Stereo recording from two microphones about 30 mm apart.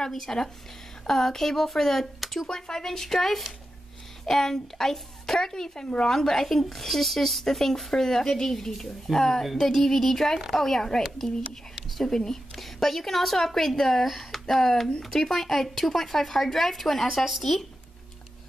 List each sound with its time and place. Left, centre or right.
0.1 s speech: centre
2.5 s speech: centre
12.0 s speech: centre